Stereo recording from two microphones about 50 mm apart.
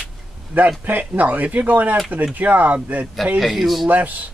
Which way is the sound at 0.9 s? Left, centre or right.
Right.